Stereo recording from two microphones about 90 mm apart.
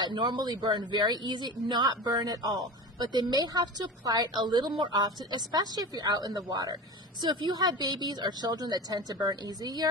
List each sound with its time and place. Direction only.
0.0 s a woman's voice: 60° right (ahead or behind)